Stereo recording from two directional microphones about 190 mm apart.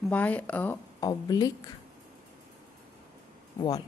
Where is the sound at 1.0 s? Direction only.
20° left (ahead or behind).